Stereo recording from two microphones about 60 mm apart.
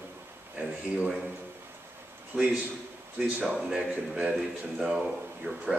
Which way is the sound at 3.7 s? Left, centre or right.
Centre.